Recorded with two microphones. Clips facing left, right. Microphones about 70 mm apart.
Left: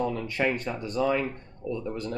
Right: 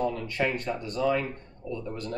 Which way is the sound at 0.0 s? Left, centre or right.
Centre.